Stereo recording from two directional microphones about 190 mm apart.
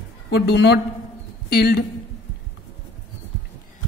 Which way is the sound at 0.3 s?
60° left (ahead or behind).